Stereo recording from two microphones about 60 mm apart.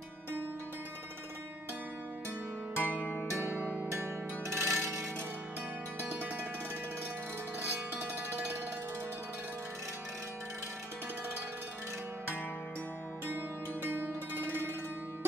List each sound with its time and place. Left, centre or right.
2.7 s music: left
3.9 s music: right
7.9 s music: right
13.8 s music: right